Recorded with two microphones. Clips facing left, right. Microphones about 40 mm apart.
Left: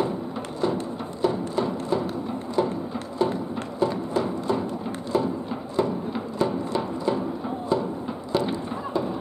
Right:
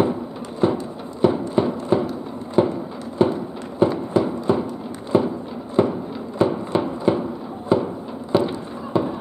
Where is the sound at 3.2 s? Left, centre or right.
Right.